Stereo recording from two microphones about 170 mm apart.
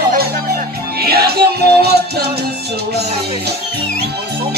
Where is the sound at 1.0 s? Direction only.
65° right (ahead or behind).